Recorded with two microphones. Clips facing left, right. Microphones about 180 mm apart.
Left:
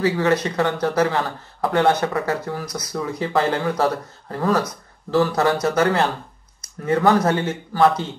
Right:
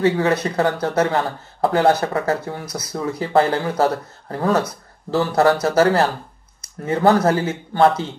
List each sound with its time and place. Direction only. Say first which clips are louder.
0.0 s speech: right 1 dB; 30° right (ahead or behind)